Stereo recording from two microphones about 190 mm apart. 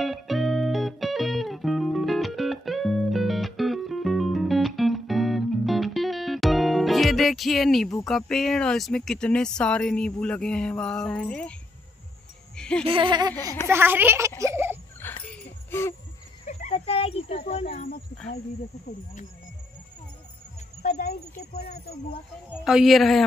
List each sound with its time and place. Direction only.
0.0 s music: centre (ahead or behind)
8.1 s speech: 5° left (ahead or behind)
12.5 s music: 5° left (ahead or behind)
12.8 s a sound: 25° right (ahead or behind)
13.7 s speech: 10° right (ahead or behind)
14.4 s a sound: 15° right (ahead or behind)
15.2 s jingle bell: 10° left (ahead or behind)
16.4 s a sound: 40° left (ahead or behind)
17.5 s speech: 35° left (ahead or behind)
21.5 s speech: 55° left (ahead or behind)
22.5 s speech: 5° right (ahead or behind)